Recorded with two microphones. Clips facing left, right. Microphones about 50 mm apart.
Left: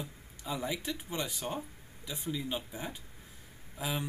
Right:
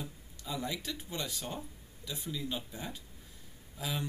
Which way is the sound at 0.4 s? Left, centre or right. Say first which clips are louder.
Left 2 dB; centre.